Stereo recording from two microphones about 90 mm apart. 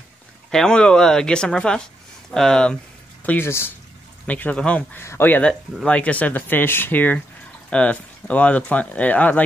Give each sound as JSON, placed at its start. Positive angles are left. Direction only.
{"t": 0.5, "sound": "speech", "side_deg": 10}
{"t": 3.3, "sound": "speech", "side_deg": 25}
{"t": 4.3, "sound": "speech", "side_deg": 15}
{"t": 4.9, "sound": "speech", "side_deg": 25}
{"t": 5.9, "sound": "speech", "side_deg": 15}